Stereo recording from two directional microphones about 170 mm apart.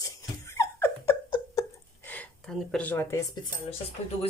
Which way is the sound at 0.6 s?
15° left (ahead or behind).